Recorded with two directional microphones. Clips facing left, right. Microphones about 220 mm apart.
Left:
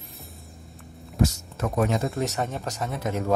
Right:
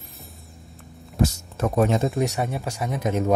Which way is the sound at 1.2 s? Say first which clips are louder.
Right 2 dB; 30° right (ahead or behind).